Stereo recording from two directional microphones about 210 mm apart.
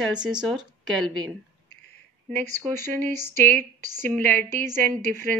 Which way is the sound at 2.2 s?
10° left (ahead or behind).